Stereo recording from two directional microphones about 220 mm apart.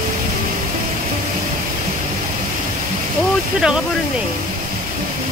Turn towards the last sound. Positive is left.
turn(degrees=-5)  # may be behind; listen again after turning